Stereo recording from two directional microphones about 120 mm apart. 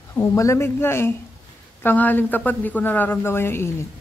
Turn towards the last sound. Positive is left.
turn(degrees=20)  # may be behind; listen again after turning